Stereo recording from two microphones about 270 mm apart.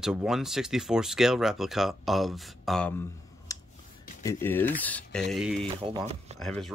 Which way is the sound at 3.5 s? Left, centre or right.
Centre.